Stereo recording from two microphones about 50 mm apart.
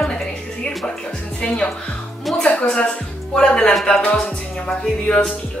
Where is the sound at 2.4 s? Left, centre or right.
Centre.